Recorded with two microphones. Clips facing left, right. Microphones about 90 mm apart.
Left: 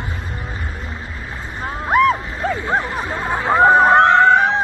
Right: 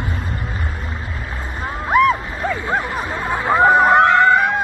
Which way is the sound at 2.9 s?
30° left (ahead or behind).